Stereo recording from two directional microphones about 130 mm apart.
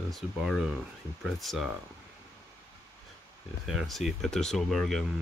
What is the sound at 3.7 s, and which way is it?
Speech, centre (ahead or behind).